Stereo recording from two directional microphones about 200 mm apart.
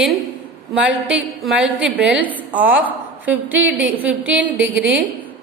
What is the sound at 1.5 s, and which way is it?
A woman's voice, 5° right (ahead or behind).